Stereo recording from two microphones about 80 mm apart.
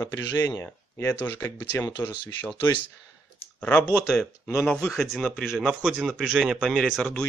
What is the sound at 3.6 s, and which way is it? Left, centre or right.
Speech, centre.